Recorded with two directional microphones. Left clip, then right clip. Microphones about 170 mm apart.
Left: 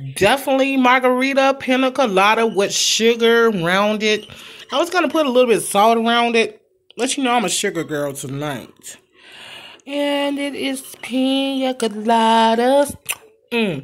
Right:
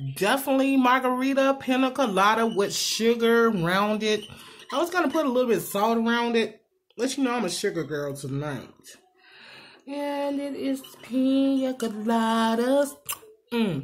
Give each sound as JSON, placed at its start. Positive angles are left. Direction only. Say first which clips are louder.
{"t": 0.1, "sound": "speech", "louder": "left 8 dB", "side_deg": 25}
{"t": 7.0, "sound": "female singing", "louder": "left 8 dB", "side_deg": 35}